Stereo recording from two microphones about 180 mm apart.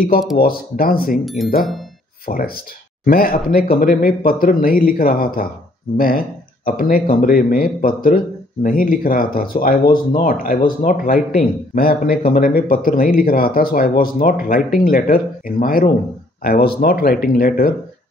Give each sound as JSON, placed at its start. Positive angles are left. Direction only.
{"t": 0.4, "sound": "speech", "side_deg": 55}
{"t": 1.2, "sound": "speech", "side_deg": 0}
{"t": 2.2, "sound": "speech", "side_deg": 55}